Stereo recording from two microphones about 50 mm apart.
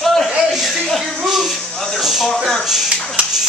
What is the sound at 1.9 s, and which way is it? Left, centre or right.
Speech, centre.